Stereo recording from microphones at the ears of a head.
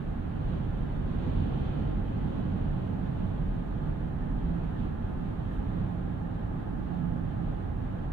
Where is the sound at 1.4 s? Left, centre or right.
Right.